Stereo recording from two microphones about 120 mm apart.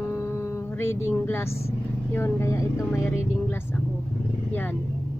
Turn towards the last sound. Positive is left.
turn(degrees=15)  # may be behind; listen again after turning